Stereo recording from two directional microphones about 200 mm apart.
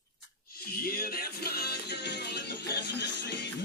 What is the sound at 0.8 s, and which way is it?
Music, 50° left (ahead or behind).